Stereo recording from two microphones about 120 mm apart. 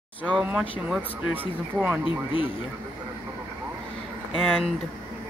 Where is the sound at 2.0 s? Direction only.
45° left (ahead or behind).